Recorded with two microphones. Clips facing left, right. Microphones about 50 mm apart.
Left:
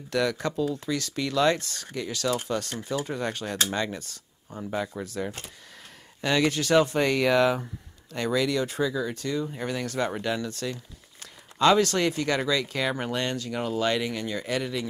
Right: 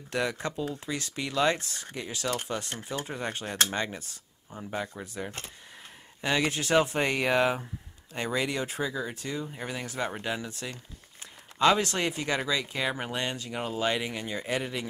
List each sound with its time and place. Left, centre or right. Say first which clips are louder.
0.1 s speech: left 4 dB; right
4.5 s speech: left 4 dB; centre
6.2 s speech: left 4 dB; right
9.5 s speech: left 5 dB; centre
11.5 s speech: left 3 dB; centre